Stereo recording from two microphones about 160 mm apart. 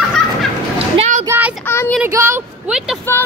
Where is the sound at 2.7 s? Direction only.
5° right (ahead or behind).